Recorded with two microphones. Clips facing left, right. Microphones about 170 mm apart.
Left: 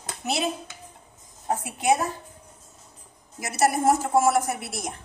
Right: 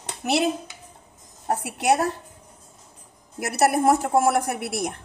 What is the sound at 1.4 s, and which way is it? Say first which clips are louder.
Speech: right 1 dB; 75° right (ahead or behind).